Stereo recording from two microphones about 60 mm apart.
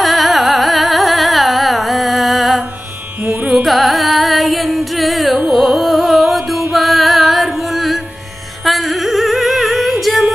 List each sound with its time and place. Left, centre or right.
0.0 s carnatic music: centre
3.2 s carnatic music: right
3.6 s music: centre
5.5 s carnatic music: centre
6.7 s music: centre